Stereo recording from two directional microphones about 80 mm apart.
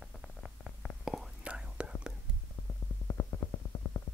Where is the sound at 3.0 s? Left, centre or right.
Left.